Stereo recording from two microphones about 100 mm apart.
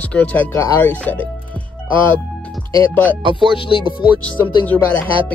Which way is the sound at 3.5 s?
60° left (ahead or behind).